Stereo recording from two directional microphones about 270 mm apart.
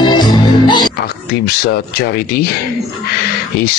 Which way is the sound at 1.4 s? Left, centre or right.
Left.